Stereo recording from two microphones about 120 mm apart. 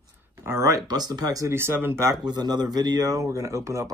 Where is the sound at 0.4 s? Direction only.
25° right (ahead or behind).